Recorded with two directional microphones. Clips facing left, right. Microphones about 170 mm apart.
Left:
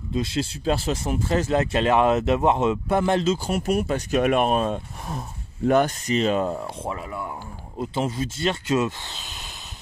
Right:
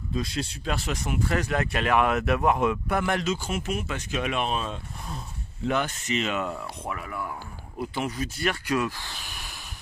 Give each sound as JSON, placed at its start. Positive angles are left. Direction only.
{"t": 0.1, "sound": "speech", "side_deg": 25}